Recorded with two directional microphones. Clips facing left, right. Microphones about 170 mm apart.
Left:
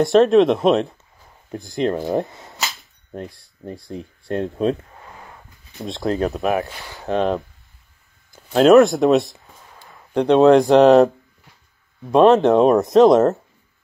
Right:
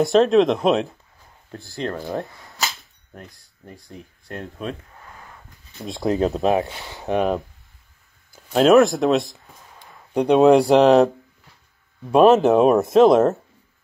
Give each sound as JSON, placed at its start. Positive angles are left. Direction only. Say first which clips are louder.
{"t": 0.0, "sound": "speech", "louder": "left 2 dB", "side_deg": 0}
{"t": 1.5, "sound": "speech", "louder": "left 7 dB", "side_deg": 15}
{"t": 2.6, "sound": "cap gun", "louder": "right 1 dB", "side_deg": 0}
{"t": 3.6, "sound": "speech", "louder": "left 9 dB", "side_deg": 35}
{"t": 6.0, "sound": "speech", "louder": "right 1 dB", "side_deg": -20}
{"t": 8.3, "sound": "speech", "louder": "left 3 dB", "side_deg": 0}
{"t": 12.1, "sound": "speech", "louder": "left 1 dB", "side_deg": -10}